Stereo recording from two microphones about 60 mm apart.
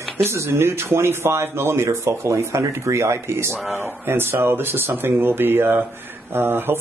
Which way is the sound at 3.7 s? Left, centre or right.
Right.